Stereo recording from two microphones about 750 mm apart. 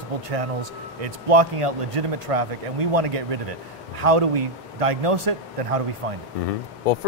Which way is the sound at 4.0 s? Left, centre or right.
Right.